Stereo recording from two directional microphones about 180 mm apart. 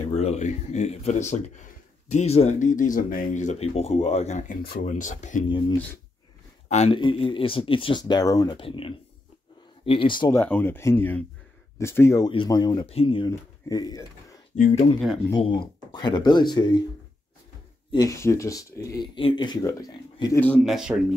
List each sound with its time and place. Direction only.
0.1 s speech: 35° left (ahead or behind)
4.6 s speech: 50° left (ahead or behind)
6.7 s speech: 40° left (ahead or behind)
10.4 s speech: 10° left (ahead or behind)
12.3 s speech: 25° left (ahead or behind)
14.5 s speech: 40° left (ahead or behind)
15.3 s speech: 25° left (ahead or behind)
17.9 s speech: 15° left (ahead or behind)
20.3 s speech: 5° left (ahead or behind)